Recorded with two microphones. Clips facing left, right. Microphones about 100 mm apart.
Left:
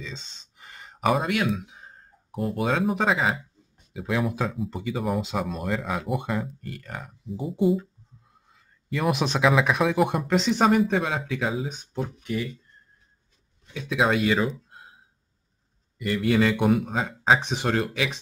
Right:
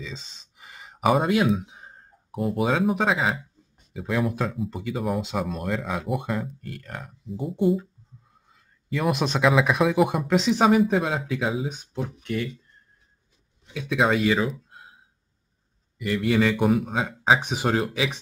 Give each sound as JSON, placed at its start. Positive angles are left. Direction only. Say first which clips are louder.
{"t": 0.0, "sound": "a sound", "louder": "right 1 dB", "side_deg": -5}
{"t": 1.2, "sound": "speech", "louder": "right 4 dB", "side_deg": -30}
{"t": 2.3, "sound": "speech", "louder": "right 2 dB", "side_deg": 0}
{"t": 13.7, "sound": "speech", "louder": "right 1 dB", "side_deg": 0}
{"t": 16.0, "sound": "speech", "louder": "even", "side_deg": 0}